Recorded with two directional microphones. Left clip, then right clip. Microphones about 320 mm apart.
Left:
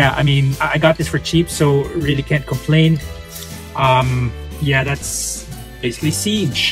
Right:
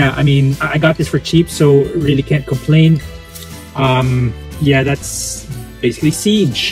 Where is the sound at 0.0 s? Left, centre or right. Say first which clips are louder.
Right 1 dB; centre.